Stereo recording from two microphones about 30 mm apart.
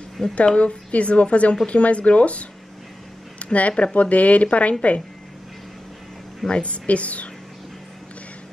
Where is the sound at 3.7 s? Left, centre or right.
Left.